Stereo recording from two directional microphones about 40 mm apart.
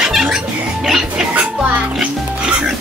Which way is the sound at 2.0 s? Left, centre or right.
Right.